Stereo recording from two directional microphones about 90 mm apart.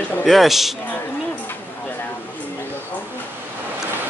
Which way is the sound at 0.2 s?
Centre (ahead or behind).